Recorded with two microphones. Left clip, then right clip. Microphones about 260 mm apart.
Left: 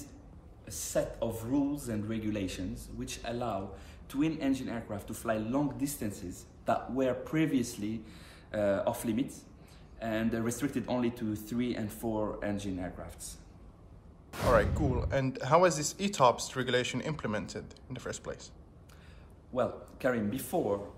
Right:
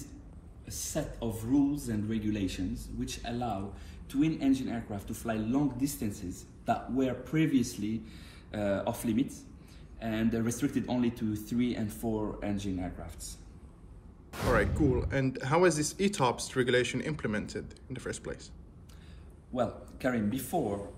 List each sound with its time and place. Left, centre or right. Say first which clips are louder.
0.9 s speech: left 5 dB; centre
3.3 s speech: even; left
4.1 s speech: right 2 dB; centre
14.3 s speech: left 2 dB; centre
15.0 s speech: even; centre
19.5 s speech: left 1 dB; centre